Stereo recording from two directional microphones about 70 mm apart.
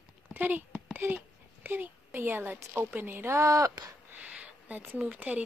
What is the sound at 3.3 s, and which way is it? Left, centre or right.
Speech, right.